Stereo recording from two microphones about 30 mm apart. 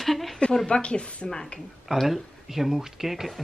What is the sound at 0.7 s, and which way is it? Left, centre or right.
Speech, left.